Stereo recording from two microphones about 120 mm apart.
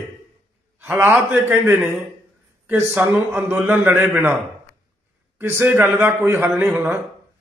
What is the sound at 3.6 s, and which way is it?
Speech, 15° right (ahead or behind).